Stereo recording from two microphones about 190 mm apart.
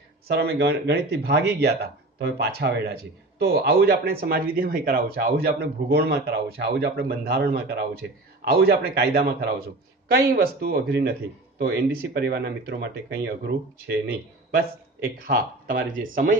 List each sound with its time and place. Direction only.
0.3 s speech: 60° right (ahead or behind)
15.1 s speech: 50° right (ahead or behind)